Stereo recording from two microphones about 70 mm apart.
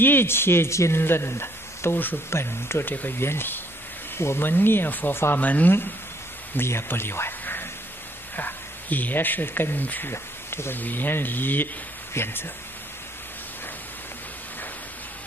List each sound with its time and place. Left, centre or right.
0.0 s speech: left
10.1 s speech: left